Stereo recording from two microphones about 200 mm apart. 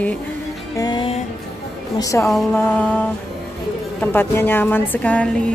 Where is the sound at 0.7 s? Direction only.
20° left (ahead or behind).